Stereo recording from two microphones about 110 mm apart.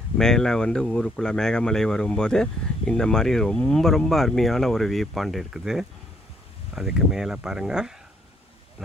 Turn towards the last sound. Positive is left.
turn(degrees=-5)  # may be behind; listen again after turning